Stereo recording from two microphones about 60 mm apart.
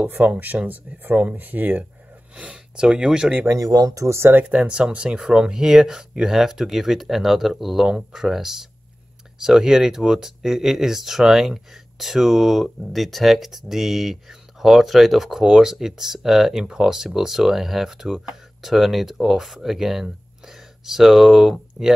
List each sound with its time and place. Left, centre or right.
0.1 s speech: right
2.3 s speech: centre
3.4 s speech: right
4.3 s speech: right
4.6 s speech: centre